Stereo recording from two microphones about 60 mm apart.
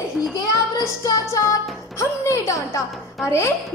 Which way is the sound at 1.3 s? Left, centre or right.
Left.